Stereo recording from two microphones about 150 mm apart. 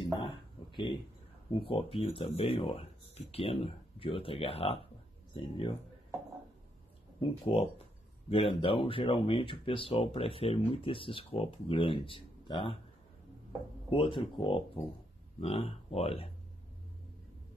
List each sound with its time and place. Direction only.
0.2 s a sound: 35° left (ahead or behind)
1.5 s speech: 35° left (ahead or behind)
7.2 s speech: 40° left (ahead or behind)
13.8 s speech: 35° left (ahead or behind)